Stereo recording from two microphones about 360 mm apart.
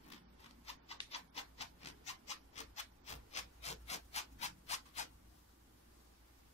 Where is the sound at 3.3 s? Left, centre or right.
Centre.